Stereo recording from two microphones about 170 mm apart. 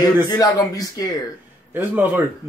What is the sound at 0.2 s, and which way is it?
Speech, 20° left (ahead or behind).